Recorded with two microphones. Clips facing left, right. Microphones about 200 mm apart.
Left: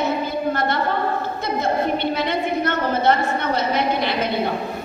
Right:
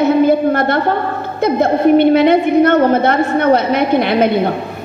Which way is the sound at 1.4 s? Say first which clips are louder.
Right 11 dB; 55° right (ahead or behind).